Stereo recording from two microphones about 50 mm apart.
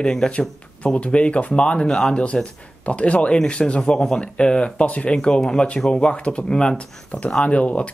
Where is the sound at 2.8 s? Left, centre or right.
Left.